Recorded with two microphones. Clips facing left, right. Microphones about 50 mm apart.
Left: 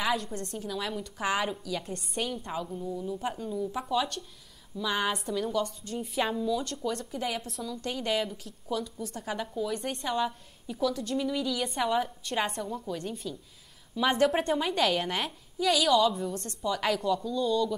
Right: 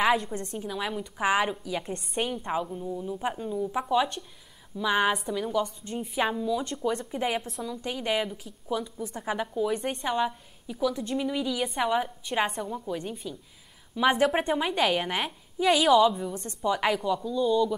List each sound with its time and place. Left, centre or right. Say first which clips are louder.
0.0 s a woman's voice: right 5 dB; right
5.1 s a woman's voice: right 2 dB; centre; by 7.4 s right
7.6 s a woman's voice: right 1 dB; centre
15.6 s a woman's voice: right 3 dB; right
15.9 s a woman's voice: right 4 dB; centre